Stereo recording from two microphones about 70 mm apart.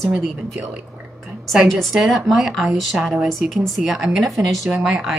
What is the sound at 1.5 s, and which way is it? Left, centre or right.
Speech, centre.